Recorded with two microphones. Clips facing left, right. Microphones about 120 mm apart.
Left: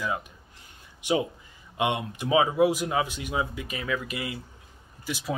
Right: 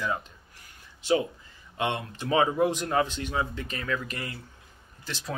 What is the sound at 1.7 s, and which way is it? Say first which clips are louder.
Speech: left 3 dB; 15° left (ahead or behind).